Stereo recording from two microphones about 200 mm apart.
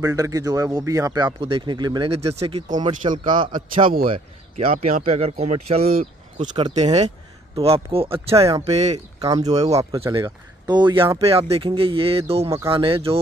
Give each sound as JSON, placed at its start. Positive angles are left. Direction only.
{"t": 0.0, "sound": "speech", "side_deg": -15}
{"t": 4.7, "sound": "speech", "side_deg": -35}
{"t": 8.4, "sound": "speech", "side_deg": -15}
{"t": 8.7, "sound": "speech", "side_deg": -35}
{"t": 9.2, "sound": "speech", "side_deg": -20}